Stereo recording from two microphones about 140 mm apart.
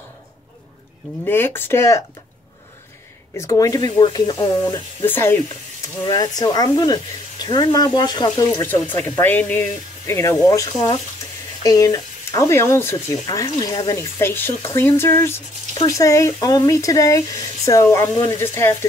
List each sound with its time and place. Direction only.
1.2 s speech: 15° left (ahead or behind)
3.3 s speech: 25° left (ahead or behind)
5.0 s speech: 15° left (ahead or behind)
6.0 s speech: 25° left (ahead or behind)
8.6 s speech: 15° left (ahead or behind)